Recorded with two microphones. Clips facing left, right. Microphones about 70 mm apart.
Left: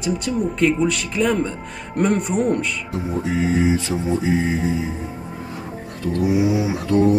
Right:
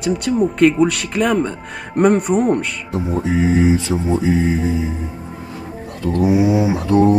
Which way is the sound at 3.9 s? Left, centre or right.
Right.